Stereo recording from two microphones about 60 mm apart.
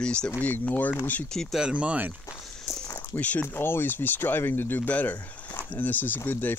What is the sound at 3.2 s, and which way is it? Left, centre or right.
Speech, left.